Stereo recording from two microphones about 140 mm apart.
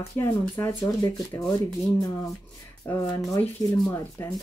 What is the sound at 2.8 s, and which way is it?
Speech, 15° left (ahead or behind).